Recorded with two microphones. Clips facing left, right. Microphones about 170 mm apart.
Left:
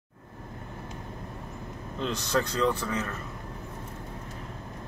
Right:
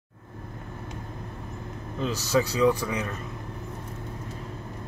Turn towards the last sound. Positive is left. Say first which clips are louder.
# right 4 dB
turn(degrees=-15)  # may be behind; listen again after turning